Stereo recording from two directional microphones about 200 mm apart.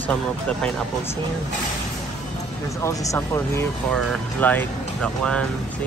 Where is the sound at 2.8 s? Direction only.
15° left (ahead or behind).